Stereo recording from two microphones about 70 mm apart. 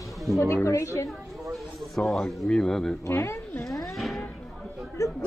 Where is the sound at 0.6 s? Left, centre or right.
Left.